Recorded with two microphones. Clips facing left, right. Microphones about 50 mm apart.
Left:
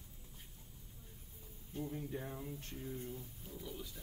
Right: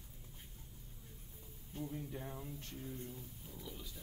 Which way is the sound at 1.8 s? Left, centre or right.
Centre.